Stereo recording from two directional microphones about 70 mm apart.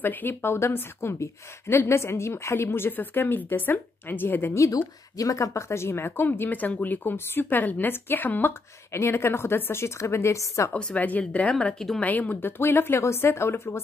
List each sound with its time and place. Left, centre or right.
0.0 s speech: left
4.7 s speech: left
10.7 s speech: centre; by 13.7 s left